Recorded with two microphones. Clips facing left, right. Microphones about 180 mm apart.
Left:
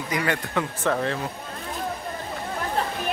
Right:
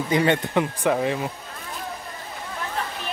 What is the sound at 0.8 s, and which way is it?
Speech, 15° right (ahead or behind).